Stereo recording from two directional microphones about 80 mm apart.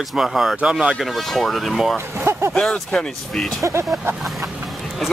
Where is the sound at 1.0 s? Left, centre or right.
Centre.